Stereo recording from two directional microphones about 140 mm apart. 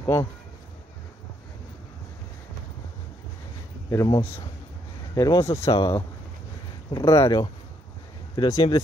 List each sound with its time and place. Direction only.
0.0 s speech: 20° left (ahead or behind)
3.9 s speech: 25° left (ahead or behind)